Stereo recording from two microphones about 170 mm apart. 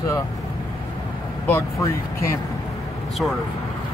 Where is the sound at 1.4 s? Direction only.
15° left (ahead or behind).